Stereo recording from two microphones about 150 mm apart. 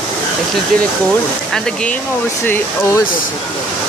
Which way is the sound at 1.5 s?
5° left (ahead or behind).